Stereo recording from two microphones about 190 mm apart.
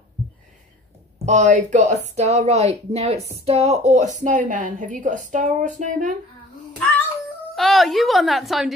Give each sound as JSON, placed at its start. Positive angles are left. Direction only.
{"t": 1.2, "sound": "speech", "side_deg": -40}
{"t": 7.5, "sound": "a woman's voice", "side_deg": 0}